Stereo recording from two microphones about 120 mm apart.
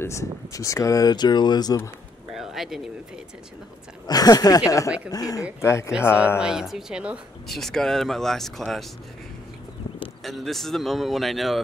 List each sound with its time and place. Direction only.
0.0 s speech: 25° left (ahead or behind)
2.3 s a sound: centre (ahead or behind)
4.1 s speech: 30° left (ahead or behind)
6.4 s speech: 5° right (ahead or behind)
10.2 s speech: centre (ahead or behind)